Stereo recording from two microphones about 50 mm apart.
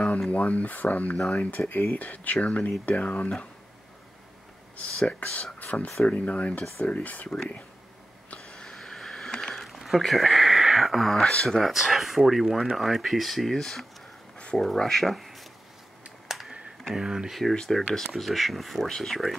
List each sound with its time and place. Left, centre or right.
0.3 s speech: left
1.7 s speech: left
5.0 s speech: left
8.4 s a sound: centre
9.6 s a sound: centre
11.2 s speech: centre
11.6 s speech: centre
16.3 s computer keyboard: centre
16.9 s speech: centre
17.3 s speech: centre